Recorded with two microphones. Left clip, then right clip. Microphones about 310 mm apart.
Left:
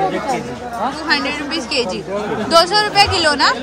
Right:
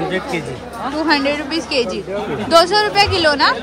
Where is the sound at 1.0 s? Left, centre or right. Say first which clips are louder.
Right 5 dB; centre.